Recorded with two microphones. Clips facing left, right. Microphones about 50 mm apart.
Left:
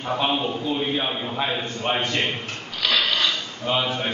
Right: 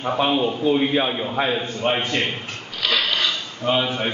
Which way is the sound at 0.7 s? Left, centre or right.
Right.